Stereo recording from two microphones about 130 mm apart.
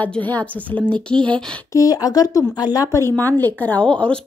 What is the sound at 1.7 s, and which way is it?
Speech, 30° left (ahead or behind).